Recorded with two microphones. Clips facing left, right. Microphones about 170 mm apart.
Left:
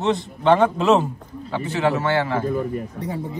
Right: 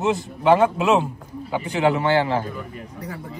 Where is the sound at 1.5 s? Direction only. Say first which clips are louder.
Right 1 dB; 15° right (ahead or behind).